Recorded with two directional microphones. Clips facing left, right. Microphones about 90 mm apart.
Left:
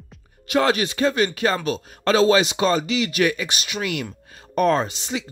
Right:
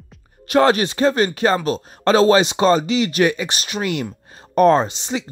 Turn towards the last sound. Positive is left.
turn(degrees=-25)  # may be behind; listen again after turning